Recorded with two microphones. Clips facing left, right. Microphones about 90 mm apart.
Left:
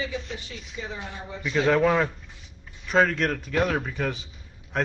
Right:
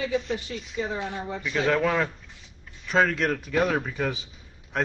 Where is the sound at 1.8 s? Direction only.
15° left (ahead or behind).